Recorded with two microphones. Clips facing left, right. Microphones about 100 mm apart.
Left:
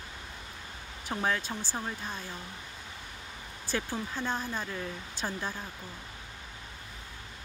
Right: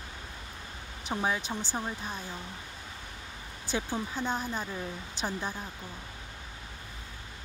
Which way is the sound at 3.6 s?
20° right (ahead or behind).